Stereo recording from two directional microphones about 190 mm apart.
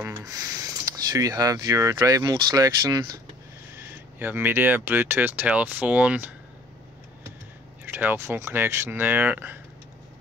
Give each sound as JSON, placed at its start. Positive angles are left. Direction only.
{"t": 0.0, "sound": "speech", "side_deg": -15}
{"t": 7.8, "sound": "speech", "side_deg": -10}